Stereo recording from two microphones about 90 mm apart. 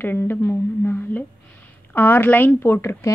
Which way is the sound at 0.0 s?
25° left (ahead or behind).